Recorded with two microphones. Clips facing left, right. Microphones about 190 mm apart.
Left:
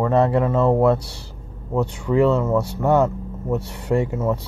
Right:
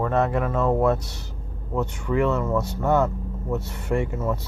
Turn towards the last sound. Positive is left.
turn(degrees=35)  # may be behind; listen again after turning